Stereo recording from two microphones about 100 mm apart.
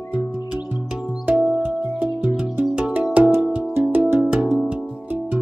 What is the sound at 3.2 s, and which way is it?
Music, 25° right (ahead or behind).